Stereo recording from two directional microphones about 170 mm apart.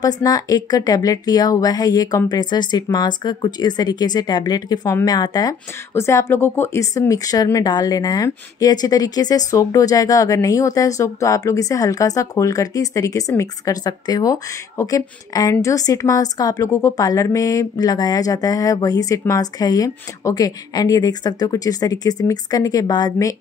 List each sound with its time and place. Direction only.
0.0 s a woman's voice: 20° left (ahead or behind)